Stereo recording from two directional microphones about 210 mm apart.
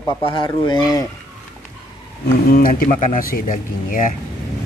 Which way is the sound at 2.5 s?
45° left (ahead or behind).